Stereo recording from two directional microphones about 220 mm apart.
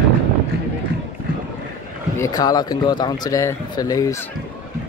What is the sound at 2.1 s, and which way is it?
A man's voice, 15° left (ahead or behind).